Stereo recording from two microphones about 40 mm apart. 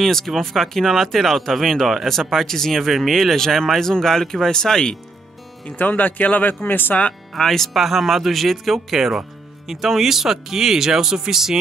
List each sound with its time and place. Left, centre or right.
0.0 s speech: centre
5.7 s speech: left
7.3 s speech: centre
7.7 s speech: centre